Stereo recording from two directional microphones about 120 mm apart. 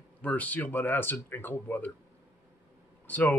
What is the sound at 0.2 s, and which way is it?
Speech, 10° left (ahead or behind).